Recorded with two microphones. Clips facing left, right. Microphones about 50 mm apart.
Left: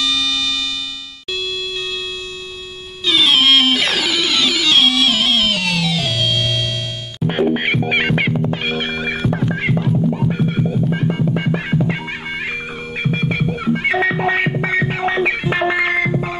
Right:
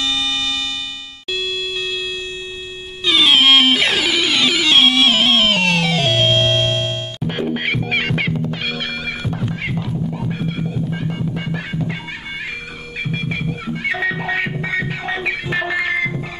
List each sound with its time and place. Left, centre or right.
3.1 s music: centre; by 6.9 s right
7.2 s music: centre
13.0 s music: left